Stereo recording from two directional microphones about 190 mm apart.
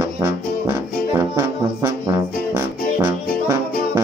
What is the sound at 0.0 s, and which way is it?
Brass instrument, 15° right (ahead or behind).